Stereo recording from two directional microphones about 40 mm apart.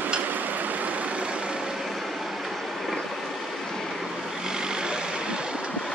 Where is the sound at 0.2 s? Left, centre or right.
Right.